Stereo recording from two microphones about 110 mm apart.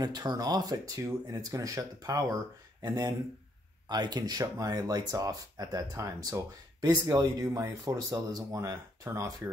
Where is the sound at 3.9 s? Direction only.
40° right (ahead or behind).